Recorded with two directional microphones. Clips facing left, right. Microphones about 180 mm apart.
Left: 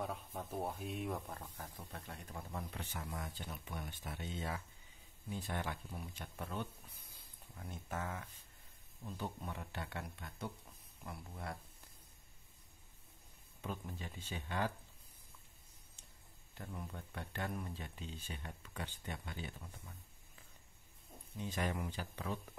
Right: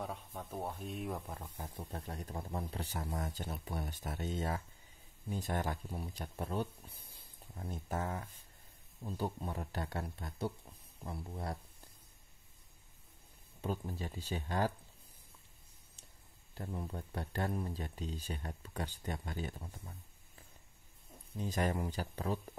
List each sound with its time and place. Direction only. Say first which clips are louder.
0.0 s speech: even; centre (ahead or behind)
1.8 s speech: right 6 dB; 35° right (ahead or behind)
13.6 s speech: right 6 dB; 35° right (ahead or behind)
16.5 s speech: right 5 dB; 35° right (ahead or behind)
21.4 s speech: right 5 dB; 40° right (ahead or behind)